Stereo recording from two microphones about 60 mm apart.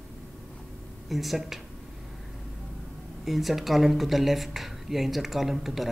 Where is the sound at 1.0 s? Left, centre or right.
Centre.